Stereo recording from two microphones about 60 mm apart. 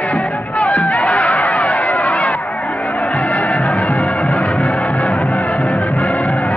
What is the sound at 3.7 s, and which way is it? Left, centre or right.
Music, left.